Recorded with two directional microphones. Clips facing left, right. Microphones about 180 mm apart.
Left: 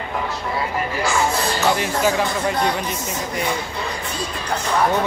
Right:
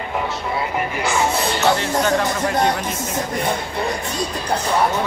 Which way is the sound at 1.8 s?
5° left (ahead or behind).